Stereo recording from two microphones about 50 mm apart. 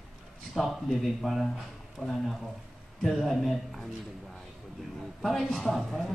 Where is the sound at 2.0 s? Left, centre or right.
Centre.